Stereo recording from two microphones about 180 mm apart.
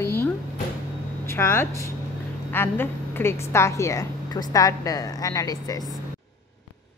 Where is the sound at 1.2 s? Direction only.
15° left (ahead or behind).